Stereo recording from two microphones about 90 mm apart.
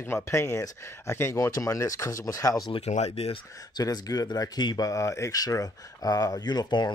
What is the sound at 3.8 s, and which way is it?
Speech, 45° left (ahead or behind).